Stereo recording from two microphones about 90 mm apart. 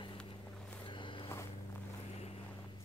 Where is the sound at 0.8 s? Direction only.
65° left (ahead or behind).